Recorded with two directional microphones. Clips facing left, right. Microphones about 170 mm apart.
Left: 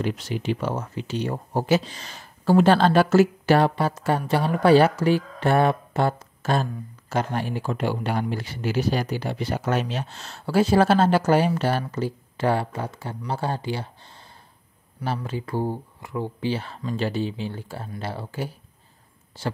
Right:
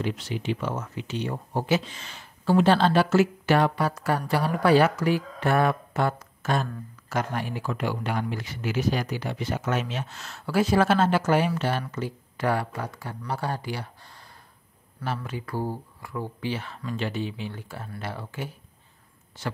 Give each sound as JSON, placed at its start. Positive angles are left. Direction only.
{"t": 0.0, "sound": "speech", "side_deg": 45}
{"t": 15.2, "sound": "speech", "side_deg": 25}